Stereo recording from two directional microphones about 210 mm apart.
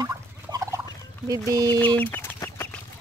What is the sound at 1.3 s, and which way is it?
Speech, 15° right (ahead or behind).